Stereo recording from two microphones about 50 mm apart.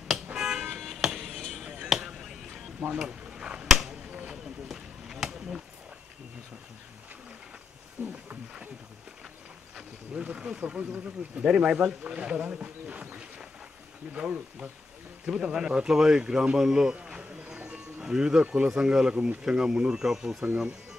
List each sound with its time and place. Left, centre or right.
0.3 s music: centre
0.7 s music: centre
1.6 s music: centre
3.0 s a sound: centre
8.0 s speech: right
10.2 s speech: right
17.6 s music: right
18.0 s speech: centre